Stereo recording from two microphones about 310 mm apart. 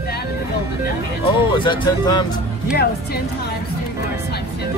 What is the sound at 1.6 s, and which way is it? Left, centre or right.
Speech, centre.